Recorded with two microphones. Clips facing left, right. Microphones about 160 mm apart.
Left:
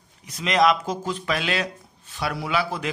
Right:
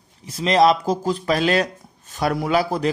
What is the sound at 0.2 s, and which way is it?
A man's voice, 30° right (ahead or behind).